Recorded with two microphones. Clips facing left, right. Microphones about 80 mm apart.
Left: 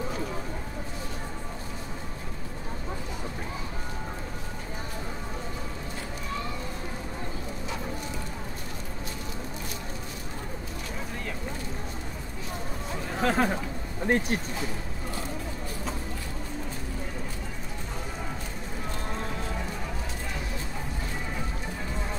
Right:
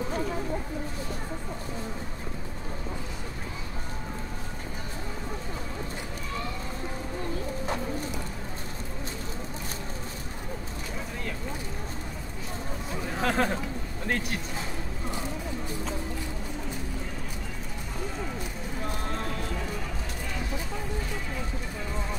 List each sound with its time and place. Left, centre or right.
13.1 s chatter: centre
14.0 s speech: left